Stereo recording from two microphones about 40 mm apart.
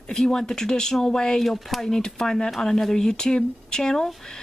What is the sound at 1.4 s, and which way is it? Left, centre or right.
Speech, centre.